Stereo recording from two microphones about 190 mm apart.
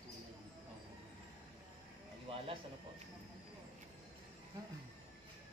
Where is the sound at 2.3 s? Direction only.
30° right (ahead or behind).